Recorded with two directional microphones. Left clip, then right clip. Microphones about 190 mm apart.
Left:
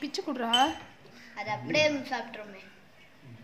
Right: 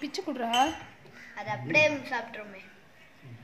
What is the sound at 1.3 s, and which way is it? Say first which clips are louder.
A woman's voice: right 2 dB; 20° left (ahead or behind).